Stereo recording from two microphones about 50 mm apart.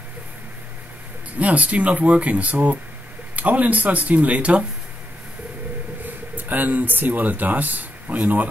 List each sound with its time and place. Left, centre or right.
1.4 s speech: right
6.0 s speech: right